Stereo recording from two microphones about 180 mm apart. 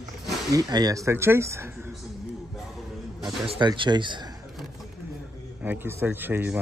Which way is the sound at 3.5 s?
25° right (ahead or behind).